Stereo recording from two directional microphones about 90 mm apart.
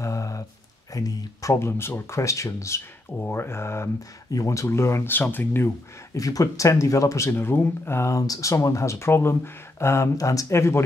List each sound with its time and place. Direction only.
0.0 s a sound: 35° left (ahead or behind)
0.9 s speech: 40° left (ahead or behind)
3.2 s speech: 25° left (ahead or behind)
6.1 s speech: 40° left (ahead or behind)